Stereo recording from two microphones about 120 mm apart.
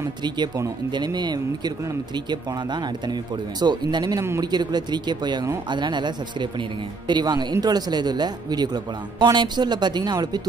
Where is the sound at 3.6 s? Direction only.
35° right (ahead or behind).